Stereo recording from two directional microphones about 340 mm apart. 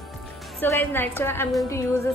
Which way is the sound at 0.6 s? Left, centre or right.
Centre.